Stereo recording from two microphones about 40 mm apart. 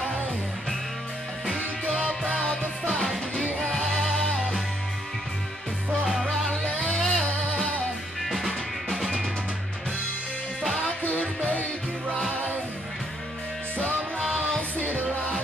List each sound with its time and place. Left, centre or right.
2.0 s music: right
2.3 s music: left
7.0 s music: centre
8.3 s music: centre
11.1 s music: left
14.8 s music: right